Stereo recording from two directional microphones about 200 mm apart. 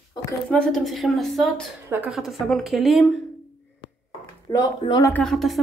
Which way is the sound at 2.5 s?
Centre (ahead or behind).